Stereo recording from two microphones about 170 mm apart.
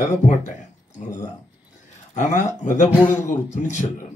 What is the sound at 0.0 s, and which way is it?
Speech, 45° left (ahead or behind).